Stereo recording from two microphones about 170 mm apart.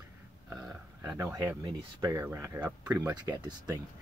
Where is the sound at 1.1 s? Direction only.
15° right (ahead or behind).